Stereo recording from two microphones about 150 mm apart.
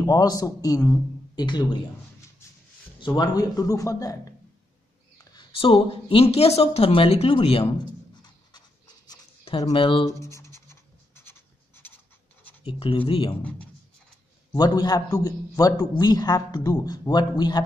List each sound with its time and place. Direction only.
0.0 s a man's voice: 25° left (ahead or behind)
3.0 s a man's voice: 30° left (ahead or behind)
5.3 s speech: 30° left (ahead or behind)
8.2 s writing: 30° left (ahead or behind)
9.7 s speech: 35° left (ahead or behind)
10.2 s scratch: 20° left (ahead or behind)
12.6 s speech: 40° left (ahead or behind)
13.4 s speech: 10° left (ahead or behind)
14.5 s a man's voice: 25° left (ahead or behind)